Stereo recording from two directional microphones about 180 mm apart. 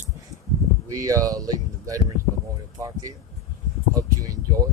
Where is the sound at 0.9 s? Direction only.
20° right (ahead or behind).